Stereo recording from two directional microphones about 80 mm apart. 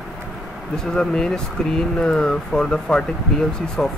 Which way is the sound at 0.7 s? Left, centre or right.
Centre.